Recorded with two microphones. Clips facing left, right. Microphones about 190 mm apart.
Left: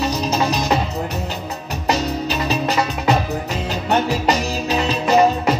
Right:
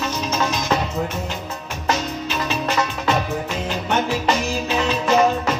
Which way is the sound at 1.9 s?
35° left (ahead or behind).